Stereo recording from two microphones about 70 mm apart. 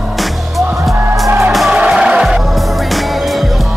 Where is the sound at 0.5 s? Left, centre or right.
Centre.